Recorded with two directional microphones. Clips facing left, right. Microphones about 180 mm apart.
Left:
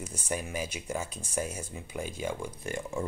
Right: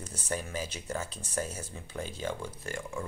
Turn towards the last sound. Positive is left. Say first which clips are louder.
# left 3 dB
turn(degrees=20)  # may be behind; listen again after turning